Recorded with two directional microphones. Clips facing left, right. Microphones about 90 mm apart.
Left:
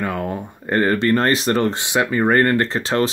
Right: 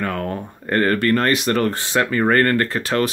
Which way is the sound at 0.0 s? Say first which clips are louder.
Even; 15° left (ahead or behind).